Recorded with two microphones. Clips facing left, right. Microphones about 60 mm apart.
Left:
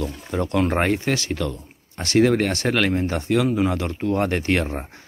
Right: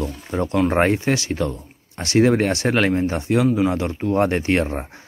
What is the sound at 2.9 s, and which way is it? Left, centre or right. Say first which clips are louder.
Speech: right 2 dB; centre.